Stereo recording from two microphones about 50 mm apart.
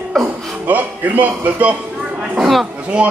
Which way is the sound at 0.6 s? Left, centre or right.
Right.